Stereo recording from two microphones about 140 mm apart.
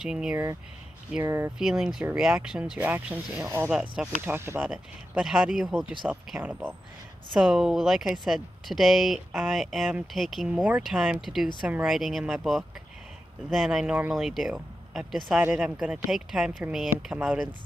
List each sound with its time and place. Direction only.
0.0 s speech: 5° right (ahead or behind)
1.2 s speech: 15° right (ahead or behind)
1.6 s speech: 5° right (ahead or behind)
3.4 s speech: 20° right (ahead or behind)
3.7 s speech: 5° right (ahead or behind)
4.2 s speech: 15° right (ahead or behind)
4.6 s speech: 5° right (ahead or behind)